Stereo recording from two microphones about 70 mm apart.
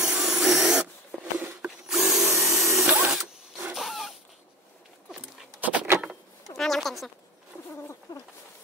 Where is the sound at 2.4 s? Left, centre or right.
Centre.